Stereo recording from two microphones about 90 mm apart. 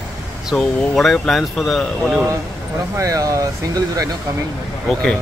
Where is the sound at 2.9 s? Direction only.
40° right (ahead or behind).